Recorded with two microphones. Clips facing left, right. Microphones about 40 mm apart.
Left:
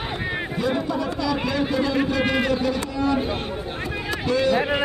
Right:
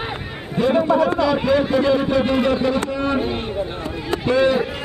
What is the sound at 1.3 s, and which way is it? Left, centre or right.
Music, right.